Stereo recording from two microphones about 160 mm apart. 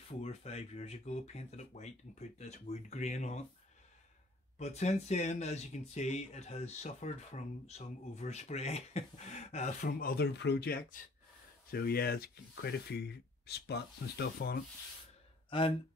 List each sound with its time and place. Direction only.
0.2 s speech: 40° left (ahead or behind)
4.6 s speech: 45° left (ahead or behind); by 14.6 s 80° left